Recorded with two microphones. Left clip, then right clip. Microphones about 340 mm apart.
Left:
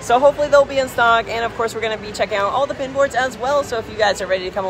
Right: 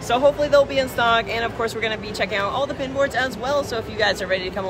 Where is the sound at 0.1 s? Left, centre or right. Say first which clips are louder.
Left 4 dB; centre.